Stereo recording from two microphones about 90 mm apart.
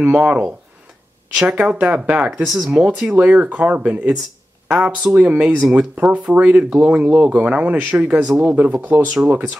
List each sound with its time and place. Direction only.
0.0 s speech: 15° right (ahead or behind)
2.3 s speech: centre (ahead or behind)
2.7 s speech: 15° right (ahead or behind)